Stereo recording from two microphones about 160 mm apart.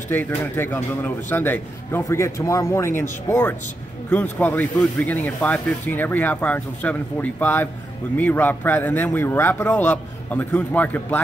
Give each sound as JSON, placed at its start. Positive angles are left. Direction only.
{"t": 0.1, "sound": "a man's voice", "side_deg": 10}